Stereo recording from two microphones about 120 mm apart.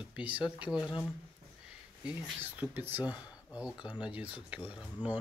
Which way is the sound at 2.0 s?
15° right (ahead or behind).